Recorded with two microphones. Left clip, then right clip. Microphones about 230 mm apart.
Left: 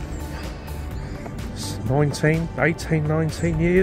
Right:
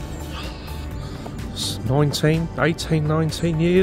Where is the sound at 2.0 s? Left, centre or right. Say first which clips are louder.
Even; centre.